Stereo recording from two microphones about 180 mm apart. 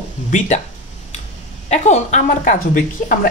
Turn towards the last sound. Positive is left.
turn(degrees=50)  # may be behind; listen again after turning